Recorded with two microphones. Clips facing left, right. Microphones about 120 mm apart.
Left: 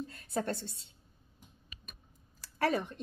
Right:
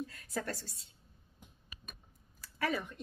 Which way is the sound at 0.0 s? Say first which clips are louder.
Left 4 dB; 30° left (ahead or behind).